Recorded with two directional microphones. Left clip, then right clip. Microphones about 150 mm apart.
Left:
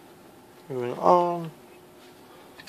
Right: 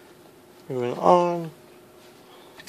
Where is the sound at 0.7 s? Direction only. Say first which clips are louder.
Right 2 dB; 35° right (ahead or behind).